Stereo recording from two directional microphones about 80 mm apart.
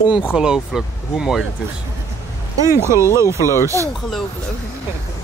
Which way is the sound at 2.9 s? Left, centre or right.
Left.